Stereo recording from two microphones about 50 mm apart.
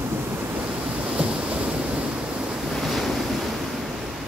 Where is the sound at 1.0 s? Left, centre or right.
Right.